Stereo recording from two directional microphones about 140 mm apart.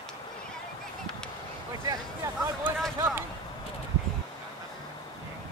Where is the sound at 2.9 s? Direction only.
15° right (ahead or behind).